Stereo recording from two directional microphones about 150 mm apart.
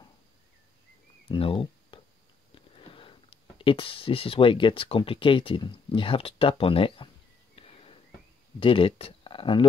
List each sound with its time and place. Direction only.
1.3 s speech: 35° left (ahead or behind)
7.5 s a sound: 40° left (ahead or behind)
8.5 s speech: 35° left (ahead or behind)